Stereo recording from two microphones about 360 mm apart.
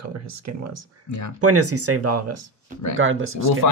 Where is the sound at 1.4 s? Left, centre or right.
Right.